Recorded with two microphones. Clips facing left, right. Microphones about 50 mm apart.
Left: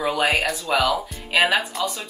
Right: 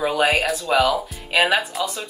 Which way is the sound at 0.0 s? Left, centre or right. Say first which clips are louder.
Right 2 dB; centre.